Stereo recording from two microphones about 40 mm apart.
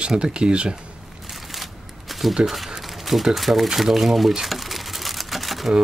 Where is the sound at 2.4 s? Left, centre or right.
Centre.